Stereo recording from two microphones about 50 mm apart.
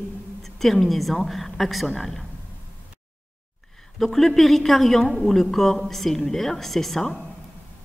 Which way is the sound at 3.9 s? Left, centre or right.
Centre.